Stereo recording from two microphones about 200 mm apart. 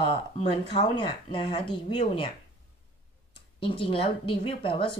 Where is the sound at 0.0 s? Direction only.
30° left (ahead or behind).